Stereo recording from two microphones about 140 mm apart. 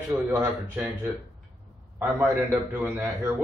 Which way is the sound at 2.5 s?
15° right (ahead or behind).